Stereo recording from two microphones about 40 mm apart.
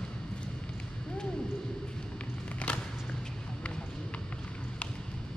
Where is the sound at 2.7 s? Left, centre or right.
Left.